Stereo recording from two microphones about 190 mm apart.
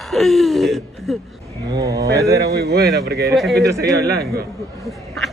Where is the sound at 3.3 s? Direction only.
Centre (ahead or behind).